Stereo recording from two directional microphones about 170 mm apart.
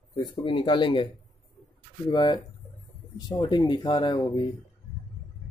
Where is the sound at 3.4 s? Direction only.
25° left (ahead or behind).